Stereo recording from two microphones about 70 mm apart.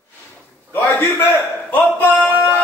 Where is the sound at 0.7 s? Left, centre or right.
Left.